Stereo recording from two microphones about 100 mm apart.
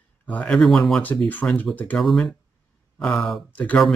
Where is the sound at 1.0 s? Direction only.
15° left (ahead or behind).